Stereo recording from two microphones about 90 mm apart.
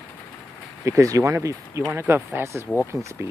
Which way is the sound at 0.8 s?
35° right (ahead or behind).